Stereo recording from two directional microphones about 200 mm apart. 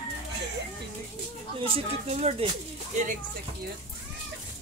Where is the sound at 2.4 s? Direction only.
30° right (ahead or behind).